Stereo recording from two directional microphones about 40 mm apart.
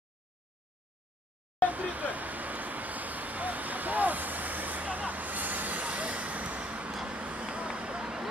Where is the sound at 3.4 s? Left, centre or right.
Right.